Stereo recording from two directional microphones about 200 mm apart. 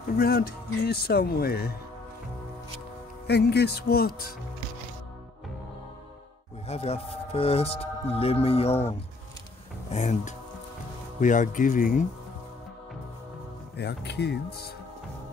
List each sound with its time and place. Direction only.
0.2 s speech: 50° left (ahead or behind)
3.3 s speech: 55° left (ahead or behind)
6.7 s speech: 30° left (ahead or behind)
9.8 s speech: 35° left (ahead or behind)
13.7 s speech: 55° left (ahead or behind)